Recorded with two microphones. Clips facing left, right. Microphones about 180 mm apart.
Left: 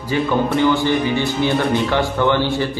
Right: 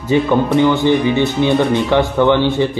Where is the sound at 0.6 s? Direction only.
20° right (ahead or behind).